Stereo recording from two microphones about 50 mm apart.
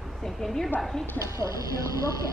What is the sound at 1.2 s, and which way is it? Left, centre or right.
Speech, right.